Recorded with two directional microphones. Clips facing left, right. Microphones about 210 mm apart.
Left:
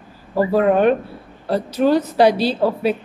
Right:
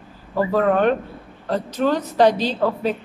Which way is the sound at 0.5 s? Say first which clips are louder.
Left 3 dB; 10° left (ahead or behind).